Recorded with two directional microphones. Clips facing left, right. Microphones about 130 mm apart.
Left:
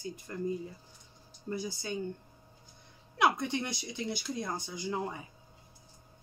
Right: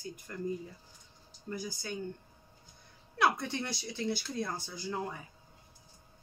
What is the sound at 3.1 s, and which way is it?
Speech, 20° left (ahead or behind).